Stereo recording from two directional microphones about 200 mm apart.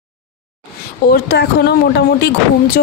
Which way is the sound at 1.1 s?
50° left (ahead or behind).